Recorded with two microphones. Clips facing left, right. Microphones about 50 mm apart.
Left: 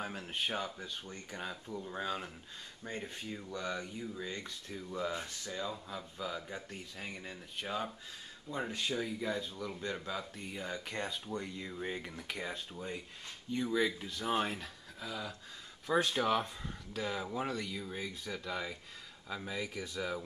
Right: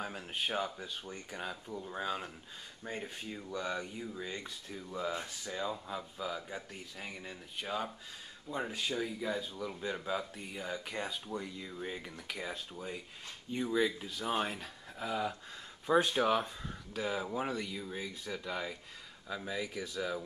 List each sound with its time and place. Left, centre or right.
0.0 s speech: centre
15.0 s a sound: right
15.9 s speech: centre